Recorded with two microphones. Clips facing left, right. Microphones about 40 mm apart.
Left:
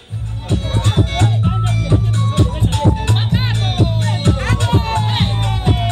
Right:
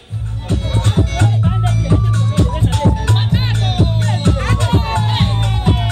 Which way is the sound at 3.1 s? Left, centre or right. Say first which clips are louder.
Right 1 dB; centre.